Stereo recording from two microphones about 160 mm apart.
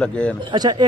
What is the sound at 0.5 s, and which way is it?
Speech, 25° right (ahead or behind).